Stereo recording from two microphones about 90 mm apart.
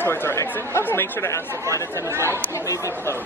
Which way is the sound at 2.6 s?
40° left (ahead or behind).